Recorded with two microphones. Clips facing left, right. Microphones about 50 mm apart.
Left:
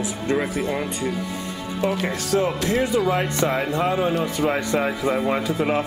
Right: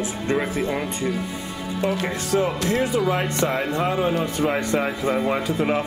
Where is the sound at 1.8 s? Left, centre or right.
Centre.